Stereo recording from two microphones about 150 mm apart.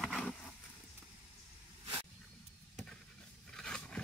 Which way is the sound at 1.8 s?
35° right (ahead or behind).